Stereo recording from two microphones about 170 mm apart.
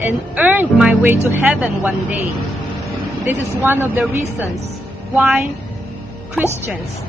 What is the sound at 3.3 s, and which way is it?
A woman's voice, 10° right (ahead or behind).